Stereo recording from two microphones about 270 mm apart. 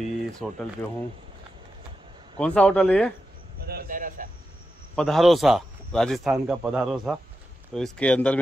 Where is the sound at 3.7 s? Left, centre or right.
Right.